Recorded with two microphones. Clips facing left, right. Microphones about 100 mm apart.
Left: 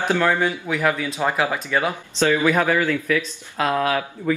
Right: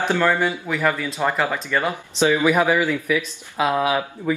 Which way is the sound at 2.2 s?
15° right (ahead or behind).